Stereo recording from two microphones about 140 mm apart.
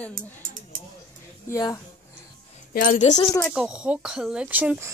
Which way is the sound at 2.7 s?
90° left.